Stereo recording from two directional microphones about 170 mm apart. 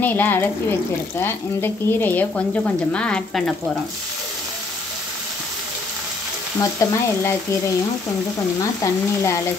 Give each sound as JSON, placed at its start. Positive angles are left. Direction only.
{"t": 0.0, "sound": "speech", "side_deg": 10}
{"t": 6.6, "sound": "speech", "side_deg": 20}
{"t": 8.8, "sound": "speech", "side_deg": 15}